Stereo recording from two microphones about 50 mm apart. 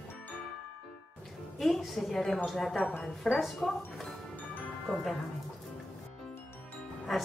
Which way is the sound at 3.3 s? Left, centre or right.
Centre.